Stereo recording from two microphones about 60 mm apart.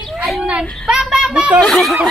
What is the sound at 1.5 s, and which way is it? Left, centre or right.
Speech, centre.